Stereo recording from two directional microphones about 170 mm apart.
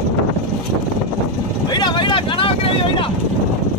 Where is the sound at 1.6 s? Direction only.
25° left (ahead or behind).